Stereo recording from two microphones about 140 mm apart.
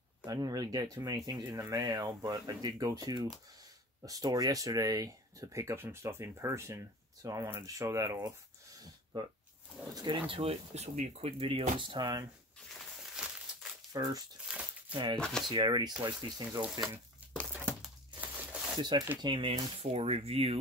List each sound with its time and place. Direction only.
0.2 s speech: 25° right (ahead or behind)
9.9 s speech: 35° right (ahead or behind)
11.8 s speech: 35° right (ahead or behind)
13.1 s crumpling: 5° right (ahead or behind)
13.9 s speech: 25° right (ahead or behind)
14.5 s a sound: 10° right (ahead or behind)
15.1 s speech: 5° left (ahead or behind)
15.5 s speech: 30° right (ahead or behind)
17.8 s crumpling: 10° right (ahead or behind)
18.8 s speech: 30° right (ahead or behind)